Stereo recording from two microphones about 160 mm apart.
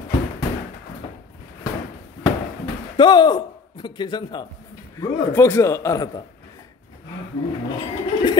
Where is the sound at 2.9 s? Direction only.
30° left (ahead or behind).